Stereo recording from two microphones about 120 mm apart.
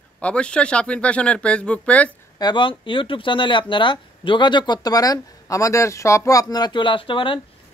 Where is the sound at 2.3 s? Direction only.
40° left (ahead or behind).